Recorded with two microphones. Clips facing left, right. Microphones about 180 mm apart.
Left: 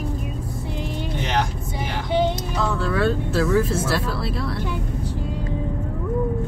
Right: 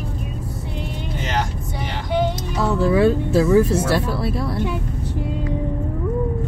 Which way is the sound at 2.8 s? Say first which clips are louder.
Right 8 dB; 15° right (ahead or behind).